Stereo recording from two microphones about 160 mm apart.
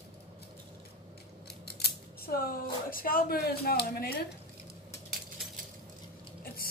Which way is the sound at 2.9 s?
65° left (ahead or behind).